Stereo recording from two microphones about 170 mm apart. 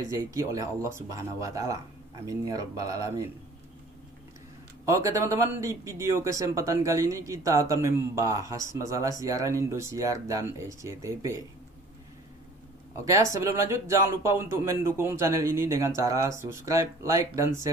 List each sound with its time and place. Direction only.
0.1 s speech: 20° right (ahead or behind)
4.8 s speech: 20° right (ahead or behind)
12.9 s speech: 20° right (ahead or behind)